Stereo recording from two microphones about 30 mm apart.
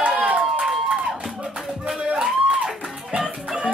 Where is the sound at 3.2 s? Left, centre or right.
Right.